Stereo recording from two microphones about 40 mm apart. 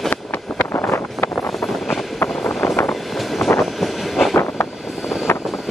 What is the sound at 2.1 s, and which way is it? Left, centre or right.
Vehicle, left.